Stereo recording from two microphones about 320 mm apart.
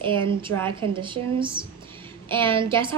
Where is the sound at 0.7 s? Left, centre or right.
Centre.